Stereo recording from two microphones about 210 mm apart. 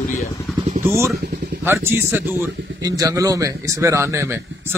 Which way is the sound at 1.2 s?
45° right (ahead or behind).